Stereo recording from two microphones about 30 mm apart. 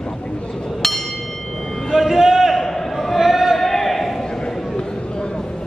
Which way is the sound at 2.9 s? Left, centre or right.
Centre.